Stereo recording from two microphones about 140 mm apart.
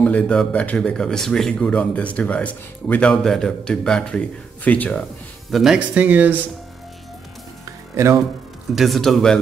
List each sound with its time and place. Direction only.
0.0 s speech: 10° left (ahead or behind)
5.5 s speech: 5° right (ahead or behind)
7.9 s speech: 20° right (ahead or behind)
8.7 s speech: centre (ahead or behind)